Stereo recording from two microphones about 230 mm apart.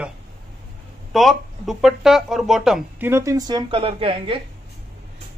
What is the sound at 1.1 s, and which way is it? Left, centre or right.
Speech, centre.